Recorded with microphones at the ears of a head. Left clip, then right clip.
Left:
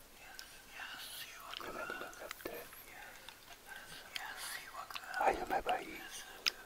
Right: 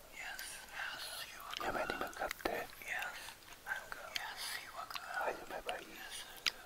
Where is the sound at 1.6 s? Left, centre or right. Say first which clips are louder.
Right 6 dB; right.